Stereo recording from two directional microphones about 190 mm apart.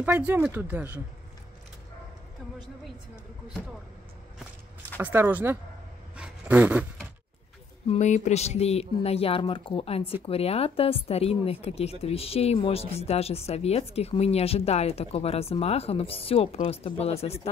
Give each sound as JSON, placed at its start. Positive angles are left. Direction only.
{"t": 0.0, "sound": "speech", "side_deg": -10}
{"t": 4.9, "sound": "speech", "side_deg": -10}
{"t": 6.1, "sound": "a sound", "side_deg": -5}
{"t": 7.9, "sound": "speech", "side_deg": 35}